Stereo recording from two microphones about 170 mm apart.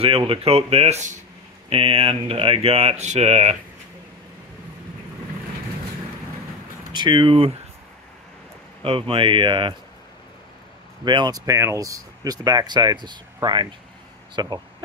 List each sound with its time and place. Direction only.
0.2 s speech: 35° right (ahead or behind)
1.7 s speech: 30° right (ahead or behind)
6.9 s speech: 25° right (ahead or behind)
8.8 s speech: 30° right (ahead or behind)
11.1 s speech: 25° right (ahead or behind)